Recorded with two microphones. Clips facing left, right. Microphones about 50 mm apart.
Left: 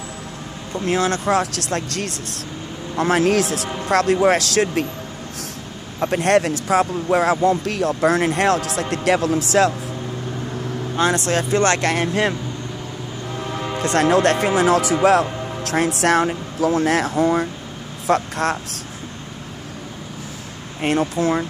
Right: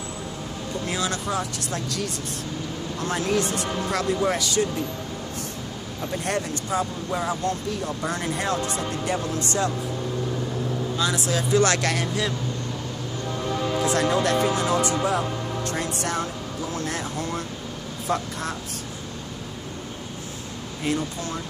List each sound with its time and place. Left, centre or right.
0.8 s speech: left
1.4 s speech: left
1.8 s speech: left
3.9 s speech: left
5.9 s speech: left
11.0 s speech: left
11.5 s speech: left
12.1 s speech: left
13.4 s music: centre
13.7 s speech: left
15.6 s speech: left
18.0 s speech: left
20.8 s speech: left